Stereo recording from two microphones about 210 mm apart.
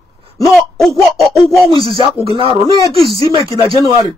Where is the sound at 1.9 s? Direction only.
25° right (ahead or behind).